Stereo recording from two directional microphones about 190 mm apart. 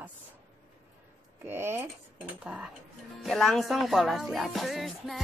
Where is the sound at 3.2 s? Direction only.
Centre (ahead or behind).